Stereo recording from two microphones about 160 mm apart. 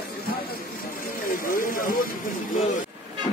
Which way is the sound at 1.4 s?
60° left (ahead or behind).